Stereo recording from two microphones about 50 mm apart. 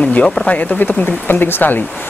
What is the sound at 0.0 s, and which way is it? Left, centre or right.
Speech, left.